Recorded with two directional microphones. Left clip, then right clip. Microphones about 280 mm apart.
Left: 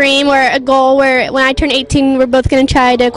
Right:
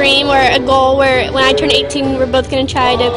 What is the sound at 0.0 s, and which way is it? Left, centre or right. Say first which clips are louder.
Speech: left 1 dB; left.